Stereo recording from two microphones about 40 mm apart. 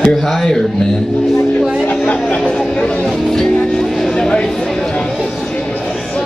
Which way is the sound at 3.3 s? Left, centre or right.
Centre.